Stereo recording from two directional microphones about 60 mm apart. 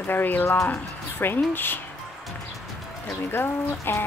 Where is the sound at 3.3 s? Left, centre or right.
Left.